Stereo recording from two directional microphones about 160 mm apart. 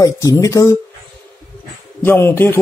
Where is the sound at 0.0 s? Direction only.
20° left (ahead or behind).